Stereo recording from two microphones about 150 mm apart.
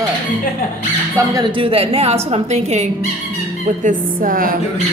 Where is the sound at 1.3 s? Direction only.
30° right (ahead or behind); by 2.9 s 50° right (ahead or behind).